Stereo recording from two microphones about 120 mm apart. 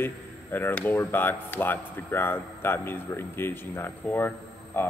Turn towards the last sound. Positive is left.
turn(degrees=15)  # may be behind; listen again after turning